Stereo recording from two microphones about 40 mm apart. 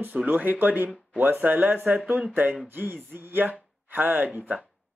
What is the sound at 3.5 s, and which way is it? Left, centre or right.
Speech, right.